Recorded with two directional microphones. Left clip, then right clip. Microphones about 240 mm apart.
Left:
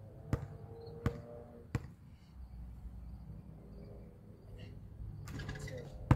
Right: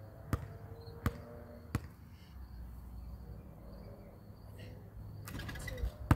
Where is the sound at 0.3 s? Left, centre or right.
Centre.